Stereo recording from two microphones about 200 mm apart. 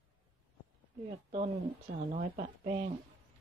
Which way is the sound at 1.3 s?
40° right (ahead or behind).